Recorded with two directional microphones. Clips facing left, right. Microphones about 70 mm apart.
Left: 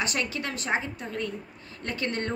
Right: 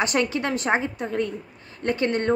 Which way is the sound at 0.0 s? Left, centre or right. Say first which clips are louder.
Right 7 dB; right.